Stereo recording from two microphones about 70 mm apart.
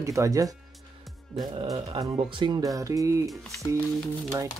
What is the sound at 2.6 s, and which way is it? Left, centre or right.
Speech, right.